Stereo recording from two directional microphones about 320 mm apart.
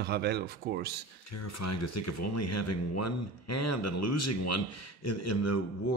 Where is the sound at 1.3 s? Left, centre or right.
Left.